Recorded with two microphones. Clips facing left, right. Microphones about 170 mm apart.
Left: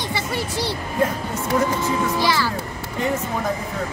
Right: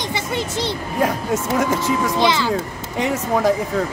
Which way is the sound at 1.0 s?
90° right.